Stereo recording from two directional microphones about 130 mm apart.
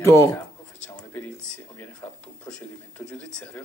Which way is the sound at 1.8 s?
15° left (ahead or behind).